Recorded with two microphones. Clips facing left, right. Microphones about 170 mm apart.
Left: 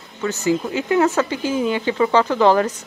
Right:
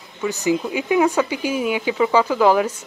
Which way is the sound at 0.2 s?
15° right (ahead or behind).